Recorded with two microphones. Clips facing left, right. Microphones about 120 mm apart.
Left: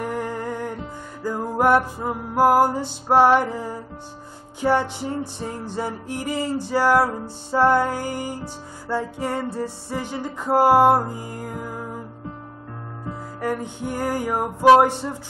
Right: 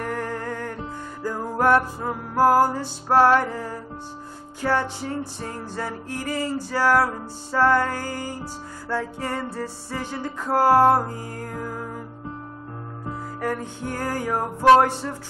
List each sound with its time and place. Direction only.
0.0 s music: 15° left (ahead or behind)
13.4 s music: 10° left (ahead or behind)